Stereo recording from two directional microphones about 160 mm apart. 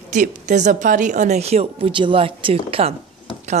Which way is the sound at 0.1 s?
50° right (ahead or behind).